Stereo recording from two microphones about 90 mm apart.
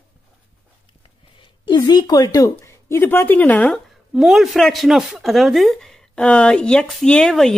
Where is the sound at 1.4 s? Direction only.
55° left (ahead or behind).